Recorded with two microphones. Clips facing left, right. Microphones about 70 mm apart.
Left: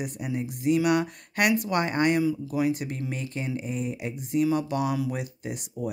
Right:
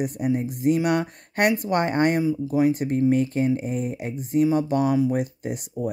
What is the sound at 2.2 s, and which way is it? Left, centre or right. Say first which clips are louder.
Speech: right 4 dB; right.